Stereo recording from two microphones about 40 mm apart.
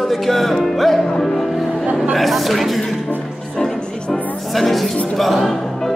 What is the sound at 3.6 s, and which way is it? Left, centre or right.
Music, centre.